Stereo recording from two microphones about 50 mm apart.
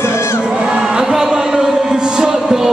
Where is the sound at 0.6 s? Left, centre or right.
Centre.